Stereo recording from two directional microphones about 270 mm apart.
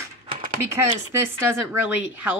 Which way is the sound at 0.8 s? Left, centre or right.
Centre.